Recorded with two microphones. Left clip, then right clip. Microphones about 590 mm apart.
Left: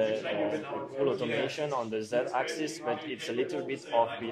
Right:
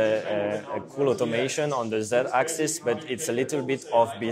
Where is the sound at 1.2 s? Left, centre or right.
Right.